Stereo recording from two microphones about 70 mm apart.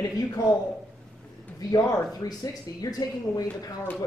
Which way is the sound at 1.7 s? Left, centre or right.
Left.